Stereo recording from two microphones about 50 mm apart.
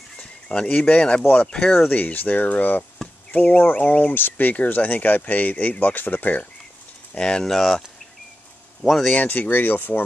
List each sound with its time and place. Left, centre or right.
0.2 s speech: left
1.2 s speech: left
1.5 s speech: centre
1.9 s speech: left
7.2 s speech: centre
8.8 s speech: centre
9.1 s speech: left